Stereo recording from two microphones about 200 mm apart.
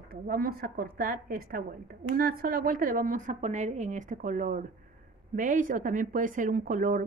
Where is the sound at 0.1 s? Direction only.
50° right (ahead or behind).